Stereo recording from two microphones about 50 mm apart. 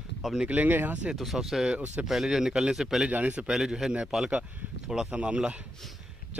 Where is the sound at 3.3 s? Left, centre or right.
Centre.